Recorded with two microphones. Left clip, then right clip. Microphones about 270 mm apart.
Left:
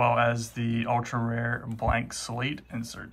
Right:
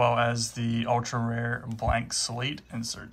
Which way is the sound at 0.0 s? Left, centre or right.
Centre.